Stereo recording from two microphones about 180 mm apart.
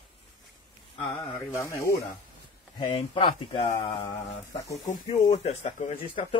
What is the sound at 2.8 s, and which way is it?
Speech, 25° left (ahead or behind).